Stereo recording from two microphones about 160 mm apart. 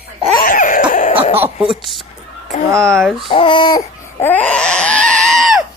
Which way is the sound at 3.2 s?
30° left (ahead or behind).